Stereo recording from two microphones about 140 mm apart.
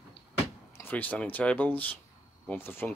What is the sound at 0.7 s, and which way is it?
Speech, 15° left (ahead or behind).